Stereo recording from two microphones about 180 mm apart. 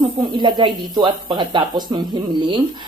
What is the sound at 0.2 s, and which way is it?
Speech, 25° right (ahead or behind).